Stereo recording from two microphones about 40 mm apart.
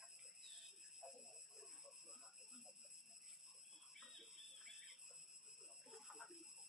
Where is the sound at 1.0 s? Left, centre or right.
Centre.